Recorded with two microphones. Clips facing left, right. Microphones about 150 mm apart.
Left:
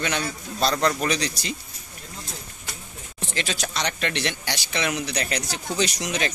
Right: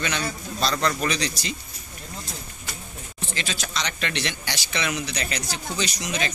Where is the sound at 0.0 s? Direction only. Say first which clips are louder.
Left 1 dB; 50° left (ahead or behind).